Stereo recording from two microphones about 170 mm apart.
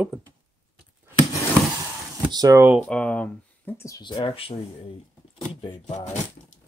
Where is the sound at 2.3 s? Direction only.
20° right (ahead or behind).